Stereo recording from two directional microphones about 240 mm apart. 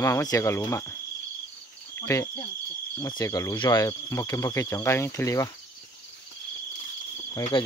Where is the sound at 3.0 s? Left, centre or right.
Centre.